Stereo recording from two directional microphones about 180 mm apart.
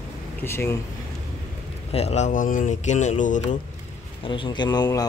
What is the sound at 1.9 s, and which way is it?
Speech, 35° left (ahead or behind).